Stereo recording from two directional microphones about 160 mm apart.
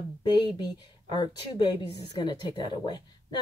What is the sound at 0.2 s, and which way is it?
Speech, 25° left (ahead or behind).